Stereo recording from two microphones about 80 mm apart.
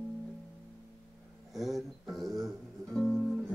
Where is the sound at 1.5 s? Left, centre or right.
Centre.